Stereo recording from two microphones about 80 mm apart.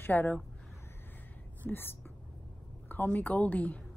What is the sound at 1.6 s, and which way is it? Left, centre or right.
Speech, left.